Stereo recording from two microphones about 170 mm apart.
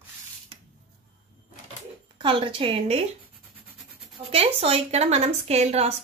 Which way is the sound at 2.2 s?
30° right (ahead or behind).